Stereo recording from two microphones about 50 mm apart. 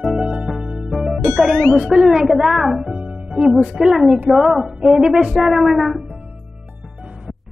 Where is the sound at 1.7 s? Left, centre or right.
Centre.